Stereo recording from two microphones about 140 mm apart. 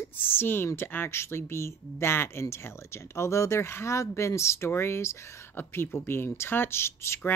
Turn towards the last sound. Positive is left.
turn(degrees=20)  # may be behind; listen again after turning